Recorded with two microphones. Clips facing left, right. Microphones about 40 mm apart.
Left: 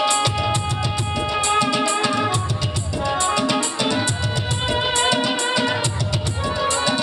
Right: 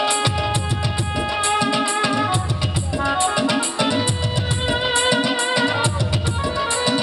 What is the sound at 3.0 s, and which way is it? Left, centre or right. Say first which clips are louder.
Music: right 1 dB; centre.